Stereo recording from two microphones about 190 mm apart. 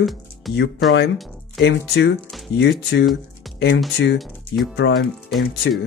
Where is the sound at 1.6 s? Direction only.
65° left (ahead or behind).